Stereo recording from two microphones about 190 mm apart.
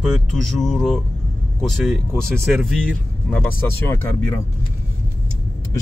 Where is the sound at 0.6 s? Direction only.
5° left (ahead or behind).